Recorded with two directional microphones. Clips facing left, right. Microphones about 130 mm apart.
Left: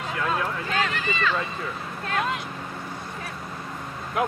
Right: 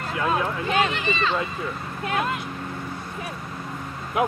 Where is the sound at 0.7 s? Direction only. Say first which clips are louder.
Right 4 dB; 20° right (ahead or behind).